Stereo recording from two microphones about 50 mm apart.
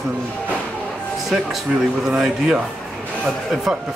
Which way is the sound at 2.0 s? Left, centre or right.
Centre.